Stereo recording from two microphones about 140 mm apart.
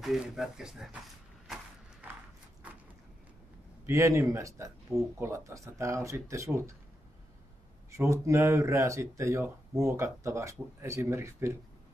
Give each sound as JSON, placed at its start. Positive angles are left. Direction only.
{"t": 0.0, "sound": "speech", "side_deg": 0}
{"t": 3.8, "sound": "speech", "side_deg": -20}
{"t": 7.9, "sound": "speech", "side_deg": -20}